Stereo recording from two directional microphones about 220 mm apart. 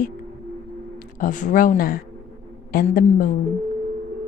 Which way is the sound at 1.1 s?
35° left (ahead or behind).